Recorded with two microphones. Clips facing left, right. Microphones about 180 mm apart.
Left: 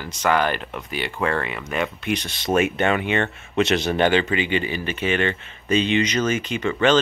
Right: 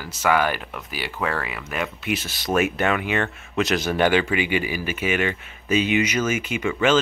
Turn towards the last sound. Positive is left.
turn(degrees=-10)  # may be behind; listen again after turning